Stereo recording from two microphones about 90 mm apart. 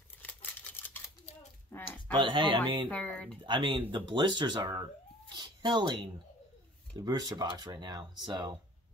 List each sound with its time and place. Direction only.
0.2 s typewriter: 20° left (ahead or behind)
1.7 s a sound: 25° left (ahead or behind)
2.1 s speech: 65° right (ahead or behind)
2.9 s speech: 15° left (ahead or behind)
3.4 s speech: 60° right (ahead or behind)
5.3 s cat: 60° right (ahead or behind)
7.0 s speech: 50° right (ahead or behind)